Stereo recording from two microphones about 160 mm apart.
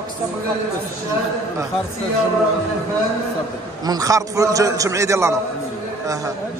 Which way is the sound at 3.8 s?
20° right (ahead or behind).